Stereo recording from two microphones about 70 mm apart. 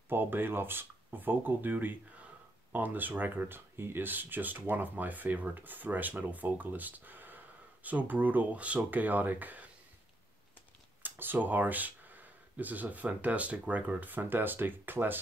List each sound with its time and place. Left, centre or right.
0.1 s speech: right
11.0 s speech: right